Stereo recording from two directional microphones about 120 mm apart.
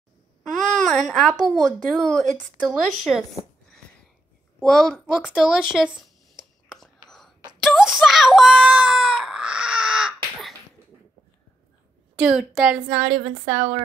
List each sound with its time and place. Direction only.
0.4 s babbling: centre (ahead or behind)
1.4 s a woman's voice: 5° left (ahead or behind)
5.0 s a sound: 5° right (ahead or behind)
7.6 s screaming: centre (ahead or behind)
12.2 s speech: 5° right (ahead or behind)
13.2 s speech: 90° right